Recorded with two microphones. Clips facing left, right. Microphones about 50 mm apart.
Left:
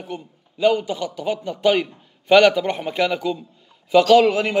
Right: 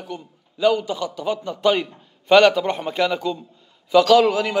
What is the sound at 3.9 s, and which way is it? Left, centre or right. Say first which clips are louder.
Speech: left 1 dB; left.